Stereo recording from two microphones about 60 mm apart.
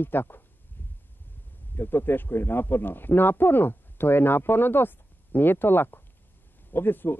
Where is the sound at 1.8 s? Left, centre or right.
Left.